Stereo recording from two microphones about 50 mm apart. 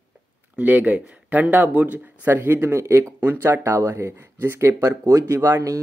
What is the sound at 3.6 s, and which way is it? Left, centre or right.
Speech, right.